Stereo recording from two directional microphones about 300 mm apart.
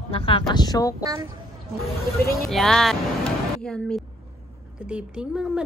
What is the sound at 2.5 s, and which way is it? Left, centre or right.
Speech, centre.